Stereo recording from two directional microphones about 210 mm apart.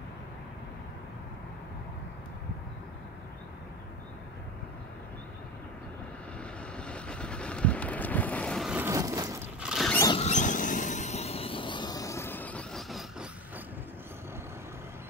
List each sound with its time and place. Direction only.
6.8 s vehicle: 5° left (ahead or behind); by 9.7 s 15° right (ahead or behind)
9.7 s a sound: centre (ahead or behind)
10.1 s vehicle: 35° left (ahead or behind); by 13.3 s centre (ahead or behind)